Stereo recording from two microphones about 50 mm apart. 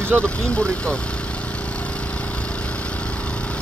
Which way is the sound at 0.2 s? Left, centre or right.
Left.